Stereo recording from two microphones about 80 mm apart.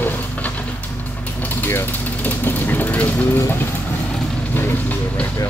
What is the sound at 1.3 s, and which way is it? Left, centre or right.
Vehicle, left.